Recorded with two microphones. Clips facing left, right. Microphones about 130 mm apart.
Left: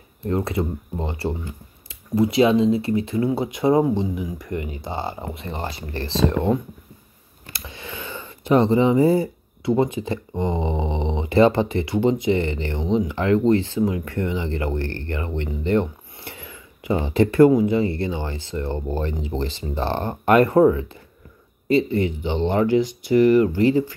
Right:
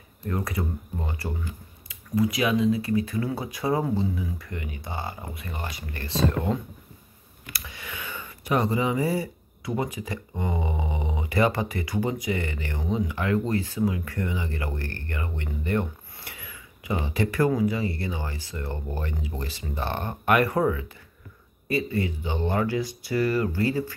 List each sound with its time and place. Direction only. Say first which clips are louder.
0.3 s speech: left 6 dB; 25° left (ahead or behind)